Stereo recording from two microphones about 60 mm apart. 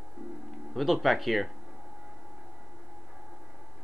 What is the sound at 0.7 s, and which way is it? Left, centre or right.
Speech, centre.